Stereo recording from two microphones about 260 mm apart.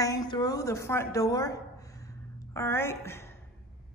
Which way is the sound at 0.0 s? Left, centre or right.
Centre.